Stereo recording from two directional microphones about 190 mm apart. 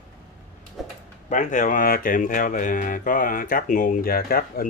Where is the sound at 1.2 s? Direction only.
40° left (ahead or behind).